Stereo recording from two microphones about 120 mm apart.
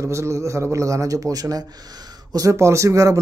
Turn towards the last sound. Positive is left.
turn(degrees=-25)  # may be behind; listen again after turning